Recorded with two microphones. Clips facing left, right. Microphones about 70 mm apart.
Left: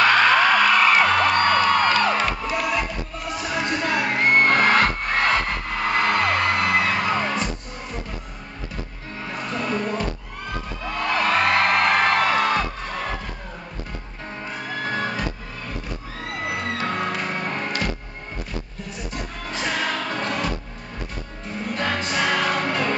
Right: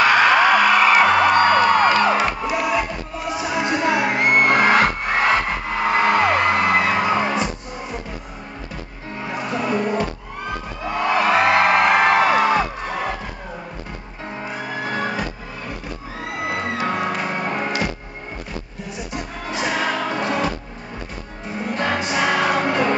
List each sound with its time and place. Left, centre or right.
0.0 s music: centre
9.2 s music: centre
14.3 s music: centre
16.3 s music: centre
18.9 s music: centre